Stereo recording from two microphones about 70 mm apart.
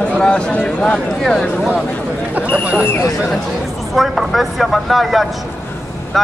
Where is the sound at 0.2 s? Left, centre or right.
Centre.